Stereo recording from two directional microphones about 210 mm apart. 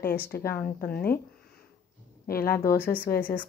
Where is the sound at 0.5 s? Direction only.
10° left (ahead or behind).